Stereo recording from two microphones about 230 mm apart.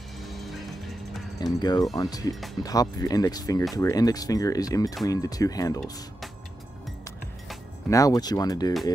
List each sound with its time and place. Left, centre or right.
0.2 s vehicle: centre
1.4 s speech: centre
7.9 s speech: centre